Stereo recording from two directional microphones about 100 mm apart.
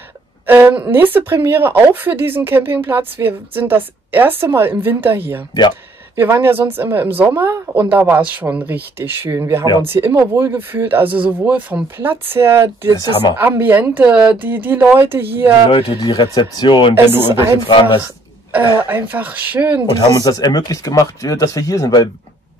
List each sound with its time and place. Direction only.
0.9 s speech: 20° right (ahead or behind)
15.7 s speech: 50° left (ahead or behind)
16.9 s speech: 20° right (ahead or behind)
17.6 s speech: 55° left (ahead or behind)
18.0 s speech: 20° right (ahead or behind)
20.2 s speech: 40° left (ahead or behind)